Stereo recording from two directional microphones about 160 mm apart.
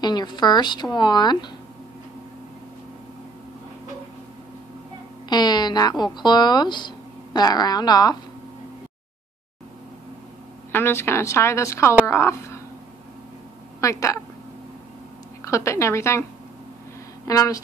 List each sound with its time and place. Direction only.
0.0 s speech: 25° left (ahead or behind)
5.3 s speech: 25° left (ahead or behind)
10.7 s speech: 15° left (ahead or behind)
13.7 s speech: 20° left (ahead or behind)
15.4 s speech: 20° left (ahead or behind)
17.3 s speech: 20° left (ahead or behind)